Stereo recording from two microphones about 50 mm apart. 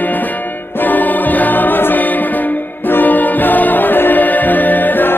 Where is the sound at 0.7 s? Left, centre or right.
Left.